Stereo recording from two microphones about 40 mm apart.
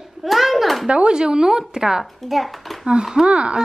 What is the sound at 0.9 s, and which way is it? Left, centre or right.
Speech, right.